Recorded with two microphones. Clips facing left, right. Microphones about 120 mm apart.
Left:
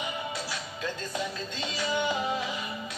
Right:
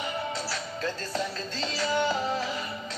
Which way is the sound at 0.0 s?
15° left (ahead or behind).